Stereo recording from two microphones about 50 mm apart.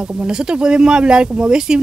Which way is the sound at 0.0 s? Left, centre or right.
Right.